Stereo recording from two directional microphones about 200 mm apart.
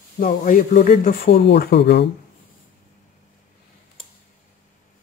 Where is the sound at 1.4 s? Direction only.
55° left (ahead or behind).